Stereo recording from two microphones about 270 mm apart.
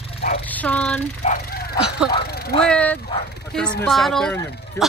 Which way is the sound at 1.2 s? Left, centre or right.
Left.